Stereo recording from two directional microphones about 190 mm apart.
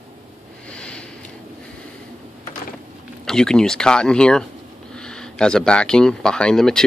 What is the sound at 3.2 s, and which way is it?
Speech, 5° left (ahead or behind).